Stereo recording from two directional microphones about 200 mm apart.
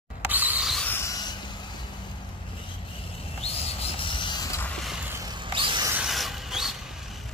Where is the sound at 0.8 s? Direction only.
15° left (ahead or behind).